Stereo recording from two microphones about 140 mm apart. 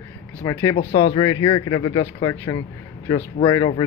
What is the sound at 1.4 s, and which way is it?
Speech, 35° left (ahead or behind).